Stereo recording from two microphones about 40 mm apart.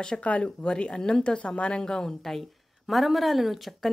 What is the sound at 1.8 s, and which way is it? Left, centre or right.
A woman's voice, centre.